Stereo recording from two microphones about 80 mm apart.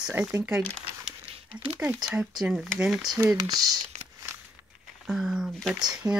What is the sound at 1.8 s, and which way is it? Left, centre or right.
Speech, centre.